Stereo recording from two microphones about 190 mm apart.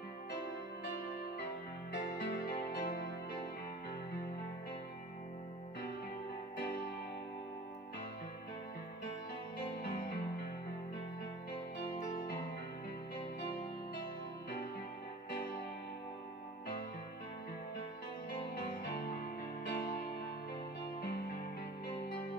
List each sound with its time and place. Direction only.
2.2 s music: 55° left (ahead or behind)
9.8 s music: 55° left (ahead or behind)
19.6 s music: 60° left (ahead or behind)